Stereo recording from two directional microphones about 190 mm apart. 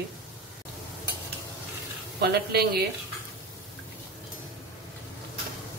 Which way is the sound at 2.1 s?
55° right (ahead or behind).